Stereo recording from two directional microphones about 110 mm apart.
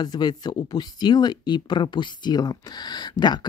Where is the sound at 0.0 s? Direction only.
40° left (ahead or behind).